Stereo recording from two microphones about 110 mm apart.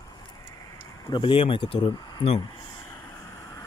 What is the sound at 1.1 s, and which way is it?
Speech, 50° left (ahead or behind).